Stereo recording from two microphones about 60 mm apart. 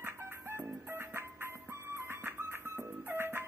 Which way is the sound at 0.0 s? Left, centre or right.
Right.